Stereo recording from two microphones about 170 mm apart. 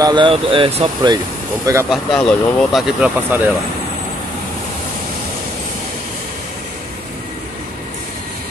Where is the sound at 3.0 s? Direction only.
10° right (ahead or behind).